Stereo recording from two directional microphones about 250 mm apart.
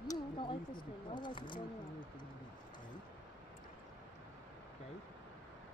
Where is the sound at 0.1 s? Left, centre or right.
Centre.